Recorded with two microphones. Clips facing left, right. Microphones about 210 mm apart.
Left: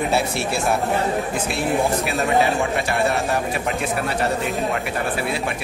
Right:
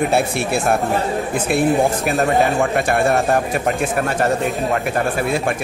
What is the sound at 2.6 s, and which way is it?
A man's voice, 50° right (ahead or behind).